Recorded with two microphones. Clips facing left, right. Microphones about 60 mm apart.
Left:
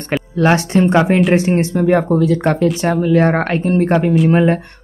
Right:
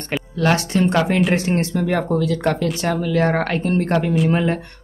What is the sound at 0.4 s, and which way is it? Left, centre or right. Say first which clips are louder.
Speech: left 5 dB; left.